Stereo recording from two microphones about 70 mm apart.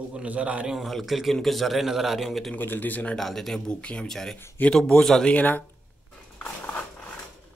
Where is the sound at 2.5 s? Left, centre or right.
Left.